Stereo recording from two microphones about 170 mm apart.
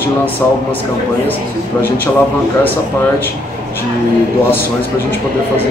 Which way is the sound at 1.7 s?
10° left (ahead or behind).